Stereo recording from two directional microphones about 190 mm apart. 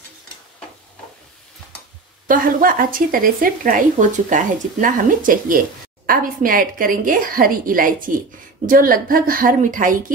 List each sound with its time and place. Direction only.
2.2 s a woman's voice: 45° right (ahead or behind)